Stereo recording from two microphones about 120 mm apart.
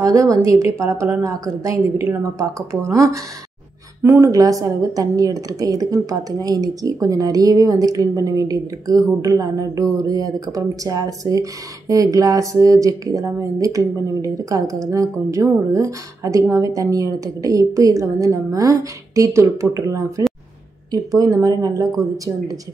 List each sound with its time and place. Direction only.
0.0 s speech: 25° right (ahead or behind)